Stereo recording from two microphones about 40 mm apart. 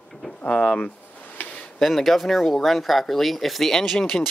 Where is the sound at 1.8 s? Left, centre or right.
Centre.